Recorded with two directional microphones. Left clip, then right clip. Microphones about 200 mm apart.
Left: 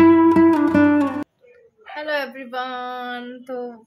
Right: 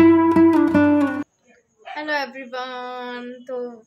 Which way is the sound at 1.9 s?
Centre (ahead or behind).